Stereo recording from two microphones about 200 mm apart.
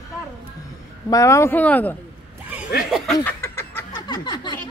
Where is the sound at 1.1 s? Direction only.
15° left (ahead or behind).